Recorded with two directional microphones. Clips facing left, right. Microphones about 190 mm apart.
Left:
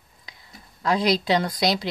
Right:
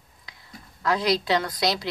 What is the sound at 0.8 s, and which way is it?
Speech, 20° left (ahead or behind).